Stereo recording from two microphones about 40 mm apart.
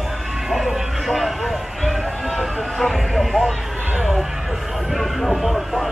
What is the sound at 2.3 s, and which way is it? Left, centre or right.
Speech, centre.